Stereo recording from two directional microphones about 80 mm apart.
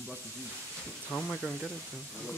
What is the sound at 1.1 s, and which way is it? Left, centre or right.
Speech, centre.